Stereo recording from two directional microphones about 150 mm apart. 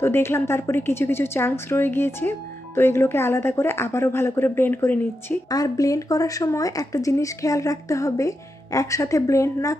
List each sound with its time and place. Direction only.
0.0 s a woman's voice: 15° left (ahead or behind)
5.5 s speech: 25° left (ahead or behind)